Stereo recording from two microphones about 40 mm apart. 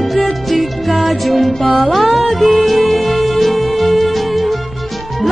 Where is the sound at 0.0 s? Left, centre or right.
Centre.